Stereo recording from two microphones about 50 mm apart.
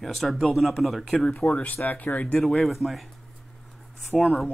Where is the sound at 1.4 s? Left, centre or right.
Centre.